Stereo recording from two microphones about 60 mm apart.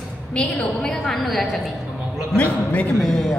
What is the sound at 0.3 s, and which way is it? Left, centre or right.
Speech, centre.